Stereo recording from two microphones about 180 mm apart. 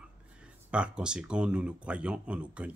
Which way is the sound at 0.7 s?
5° right (ahead or behind).